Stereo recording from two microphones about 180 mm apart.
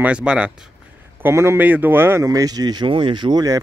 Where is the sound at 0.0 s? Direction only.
5° right (ahead or behind).